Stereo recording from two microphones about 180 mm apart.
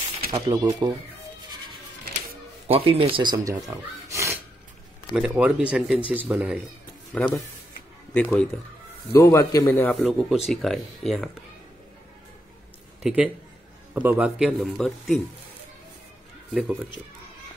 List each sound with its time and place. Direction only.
0.3 s speech: 20° right (ahead or behind)
2.7 s speech: 30° right (ahead or behind)
3.5 s a sound: 15° right (ahead or behind)
5.1 s a man's voice: 10° right (ahead or behind); by 9.8 s 20° left (ahead or behind)
9.8 s speech: centre (ahead or behind)
13.0 s speech: 5° right (ahead or behind)